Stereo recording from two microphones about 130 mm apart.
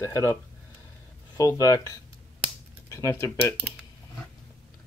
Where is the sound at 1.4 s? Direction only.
25° left (ahead or behind).